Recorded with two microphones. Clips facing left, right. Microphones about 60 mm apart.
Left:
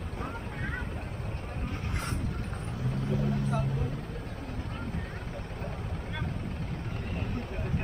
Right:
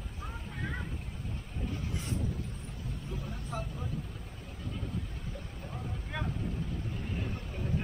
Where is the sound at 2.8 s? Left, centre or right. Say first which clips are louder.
Left 11 dB; left.